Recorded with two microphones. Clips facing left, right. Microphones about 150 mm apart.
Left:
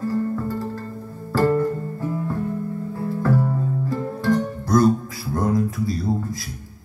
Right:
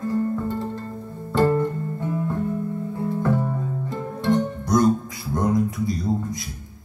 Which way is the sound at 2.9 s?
20° right (ahead or behind).